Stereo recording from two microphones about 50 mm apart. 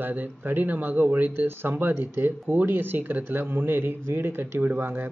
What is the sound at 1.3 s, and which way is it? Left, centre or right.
Speech, right.